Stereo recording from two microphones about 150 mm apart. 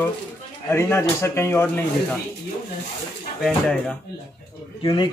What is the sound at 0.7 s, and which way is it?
Speech, 15° left (ahead or behind).